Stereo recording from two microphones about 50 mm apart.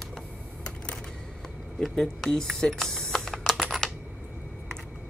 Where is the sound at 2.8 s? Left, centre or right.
Centre.